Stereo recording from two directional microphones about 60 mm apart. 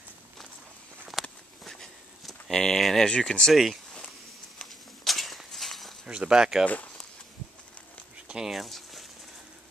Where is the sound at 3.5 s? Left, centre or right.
Centre.